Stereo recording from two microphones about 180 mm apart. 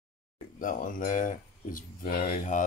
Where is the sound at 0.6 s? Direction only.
50° left (ahead or behind).